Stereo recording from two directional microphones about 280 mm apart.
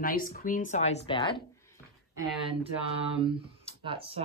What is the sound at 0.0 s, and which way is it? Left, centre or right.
Speech, left.